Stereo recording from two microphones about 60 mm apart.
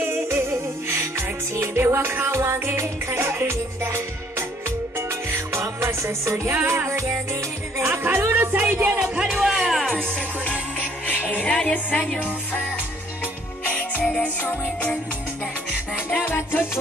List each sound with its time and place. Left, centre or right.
0.0 s music: right
6.5 s music: right
8.9 s speech: centre
9.5 s music: centre
11.1 s music: left
14.0 s music: centre
16.3 s music: left